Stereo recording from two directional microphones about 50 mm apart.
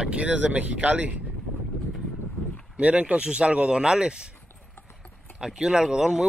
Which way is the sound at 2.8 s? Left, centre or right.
Right.